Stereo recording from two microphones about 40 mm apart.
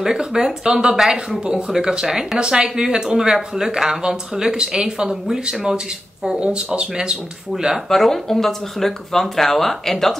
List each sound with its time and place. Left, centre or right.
0.0 s speech: centre
6.4 s speech: right
7.9 s speech: centre